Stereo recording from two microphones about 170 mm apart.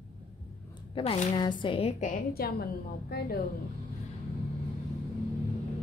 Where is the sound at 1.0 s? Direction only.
30° left (ahead or behind).